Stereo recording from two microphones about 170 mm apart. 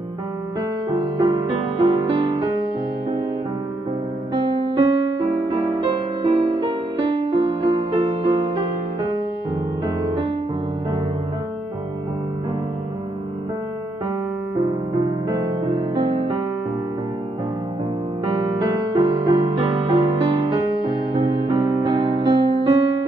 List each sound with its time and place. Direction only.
0.9 s music: 25° right (ahead or behind)
4.3 s music: 25° right (ahead or behind)
9.8 s music: 25° right (ahead or behind)
15.2 s music: 25° right (ahead or behind)
18.2 s music: 35° right (ahead or behind)